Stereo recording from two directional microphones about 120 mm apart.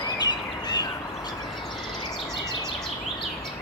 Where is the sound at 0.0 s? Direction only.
35° left (ahead or behind).